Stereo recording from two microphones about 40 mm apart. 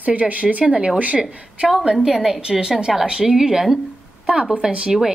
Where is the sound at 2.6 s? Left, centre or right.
Centre.